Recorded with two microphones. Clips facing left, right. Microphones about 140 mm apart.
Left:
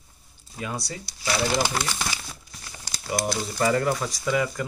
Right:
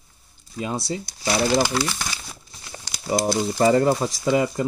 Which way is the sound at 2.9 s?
25° right (ahead or behind).